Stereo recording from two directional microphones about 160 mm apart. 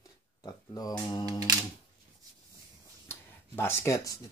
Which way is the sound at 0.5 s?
25° left (ahead or behind).